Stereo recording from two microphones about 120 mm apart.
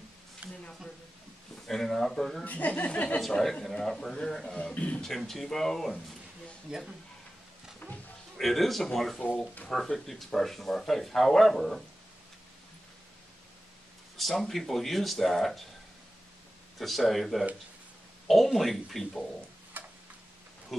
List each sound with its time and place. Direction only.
0.4 s a sound: 10° right (ahead or behind)
1.7 s speech: 5° left (ahead or behind)
8.4 s speech: centre (ahead or behind)
14.1 s speech: centre (ahead or behind)
16.7 s speech: centre (ahead or behind)
19.7 s tick-tock: 15° right (ahead or behind)